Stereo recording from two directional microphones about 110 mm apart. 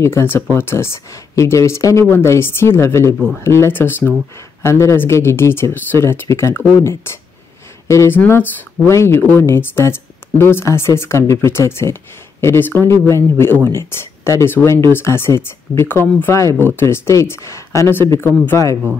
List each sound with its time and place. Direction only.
0.0 s speech: 20° left (ahead or behind)